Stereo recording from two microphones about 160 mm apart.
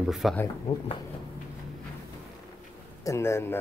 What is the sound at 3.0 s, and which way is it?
Speech, 15° left (ahead or behind).